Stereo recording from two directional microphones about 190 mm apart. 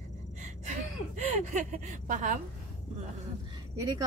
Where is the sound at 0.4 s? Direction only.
40° right (ahead or behind).